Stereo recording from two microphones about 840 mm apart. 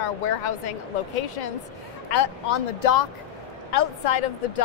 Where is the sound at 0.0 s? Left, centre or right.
Left.